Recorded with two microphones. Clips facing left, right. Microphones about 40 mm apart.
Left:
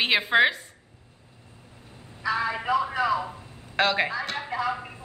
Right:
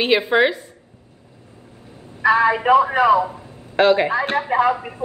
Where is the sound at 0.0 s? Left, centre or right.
Centre.